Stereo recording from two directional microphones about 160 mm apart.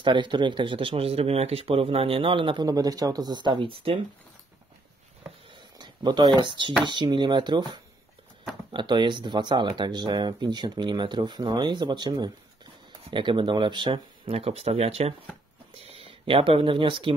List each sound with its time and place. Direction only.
0.0 s speech: 30° right (ahead or behind)
5.5 s a sound: 25° right (ahead or behind)
6.8 s speech: 30° right (ahead or behind)